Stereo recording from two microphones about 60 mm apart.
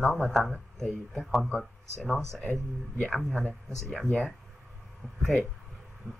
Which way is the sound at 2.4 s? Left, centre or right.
Left.